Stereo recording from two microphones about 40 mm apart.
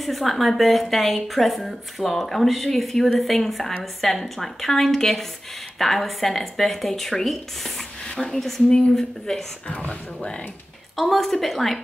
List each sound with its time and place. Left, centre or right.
0.0 s a woman's voice: centre
8.0 s a woman's voice: centre
9.8 s speech: left
11.0 s a woman's voice: centre